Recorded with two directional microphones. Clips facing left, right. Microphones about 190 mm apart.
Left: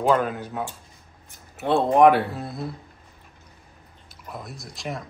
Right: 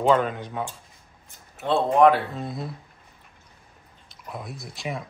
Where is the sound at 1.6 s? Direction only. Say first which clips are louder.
Left 1 dB; 15° left (ahead or behind).